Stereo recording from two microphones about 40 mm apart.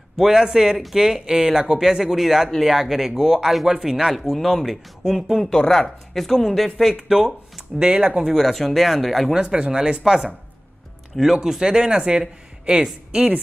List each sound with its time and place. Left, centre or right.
0.2 s speech: centre
4.2 s speech: centre
5.0 s speech: centre
5.5 s speech: centre
6.9 s speech: centre
7.2 s a sound: centre
7.8 s speech: right
8.3 s speech: centre
9.3 s speech: centre
11.1 s speech: centre
11.6 s speech: right